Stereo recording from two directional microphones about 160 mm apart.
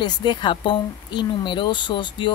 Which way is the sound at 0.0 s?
30° left (ahead or behind).